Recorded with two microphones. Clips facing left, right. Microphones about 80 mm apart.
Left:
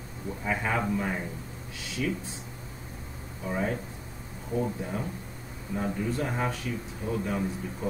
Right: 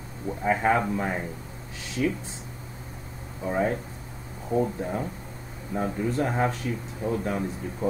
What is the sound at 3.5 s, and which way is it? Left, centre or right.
A man's voice, right.